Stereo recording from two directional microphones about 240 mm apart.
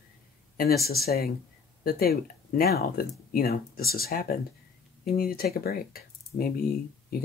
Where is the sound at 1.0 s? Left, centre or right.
Left.